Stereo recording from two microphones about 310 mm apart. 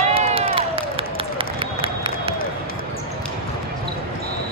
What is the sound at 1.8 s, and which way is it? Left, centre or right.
Crowd, centre.